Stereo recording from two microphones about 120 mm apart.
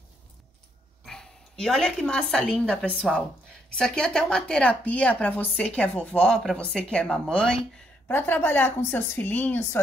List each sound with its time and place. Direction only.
1.0 s speech: 5° left (ahead or behind)